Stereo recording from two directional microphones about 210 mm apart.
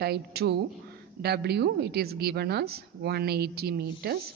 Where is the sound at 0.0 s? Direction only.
50° right (ahead or behind).